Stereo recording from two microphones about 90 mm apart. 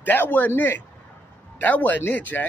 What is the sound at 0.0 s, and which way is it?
A man's voice, 20° left (ahead or behind).